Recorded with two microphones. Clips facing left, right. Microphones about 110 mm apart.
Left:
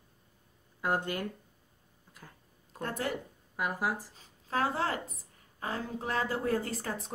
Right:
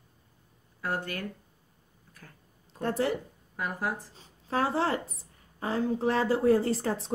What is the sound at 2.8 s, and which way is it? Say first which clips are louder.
Speech: right 7 dB; 35° right (ahead or behind).